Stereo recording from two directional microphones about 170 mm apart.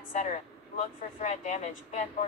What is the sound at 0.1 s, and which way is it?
Speech, 45° left (ahead or behind).